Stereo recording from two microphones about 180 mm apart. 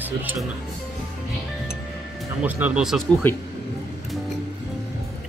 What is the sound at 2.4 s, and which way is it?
Speech, 5° right (ahead or behind).